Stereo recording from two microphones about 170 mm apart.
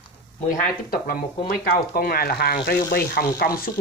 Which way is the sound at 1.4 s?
65° left (ahead or behind).